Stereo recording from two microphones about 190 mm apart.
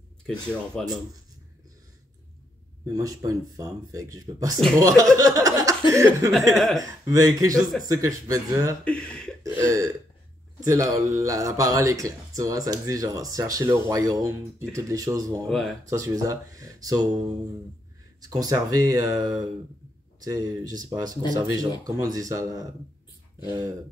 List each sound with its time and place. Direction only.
0.3 s speech: 5° left (ahead or behind)
2.9 s speech: 20° right (ahead or behind)
6.5 s speech: centre (ahead or behind)
6.8 s speech: 15° right (ahead or behind)
8.8 s a sound: 5° left (ahead or behind)
9.4 s throat clearing: 15° right (ahead or behind)
10.6 s speech: 20° right (ahead or behind)
18.2 s speech: 20° right (ahead or behind)